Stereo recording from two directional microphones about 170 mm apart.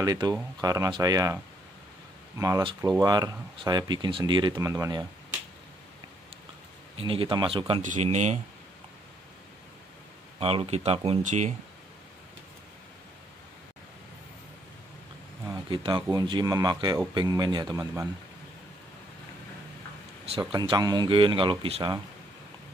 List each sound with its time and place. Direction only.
0.0 s speech: 20° right (ahead or behind)
7.0 s speech: 30° right (ahead or behind)
7.8 s speech: 45° right (ahead or behind)
10.4 s speech: 35° right (ahead or behind)
15.4 s speech: 25° right (ahead or behind)
20.2 s speech: 30° right (ahead or behind)